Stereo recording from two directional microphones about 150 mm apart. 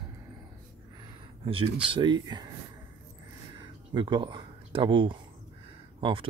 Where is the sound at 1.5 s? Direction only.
35° right (ahead or behind).